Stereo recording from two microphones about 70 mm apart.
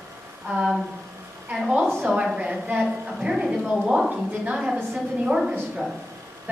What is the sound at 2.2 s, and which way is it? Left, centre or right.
A woman's voice, centre.